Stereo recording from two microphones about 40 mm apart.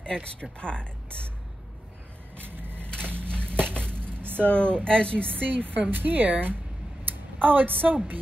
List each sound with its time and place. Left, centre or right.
0.0 s speech: left
2.4 s vehicle: right
3.1 s a sound: right
4.5 s speech: left
5.4 s speech: right